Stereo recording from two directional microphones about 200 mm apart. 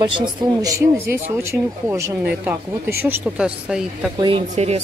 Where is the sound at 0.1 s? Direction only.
20° right (ahead or behind); by 4.1 s 5° right (ahead or behind).